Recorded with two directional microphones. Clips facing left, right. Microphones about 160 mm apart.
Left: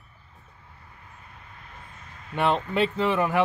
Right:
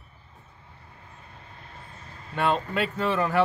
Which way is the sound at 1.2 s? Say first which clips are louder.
Right 1 dB; 30° right (ahead or behind).